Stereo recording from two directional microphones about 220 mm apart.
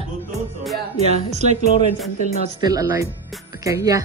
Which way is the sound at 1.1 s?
30° right (ahead or behind).